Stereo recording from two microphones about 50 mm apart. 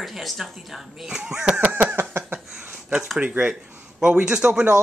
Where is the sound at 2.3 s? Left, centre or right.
Right.